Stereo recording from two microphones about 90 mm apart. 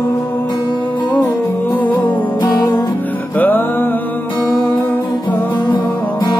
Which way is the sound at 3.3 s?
20° left (ahead or behind).